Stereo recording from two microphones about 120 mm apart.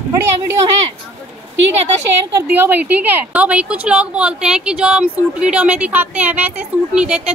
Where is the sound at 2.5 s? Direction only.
15° right (ahead or behind).